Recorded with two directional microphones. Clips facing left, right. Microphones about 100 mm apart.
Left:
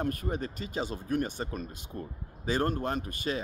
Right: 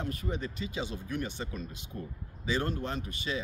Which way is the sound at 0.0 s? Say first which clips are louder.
Left 3 dB; 50° left (ahead or behind).